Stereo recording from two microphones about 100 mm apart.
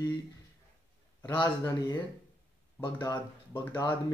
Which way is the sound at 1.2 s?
40° left (ahead or behind).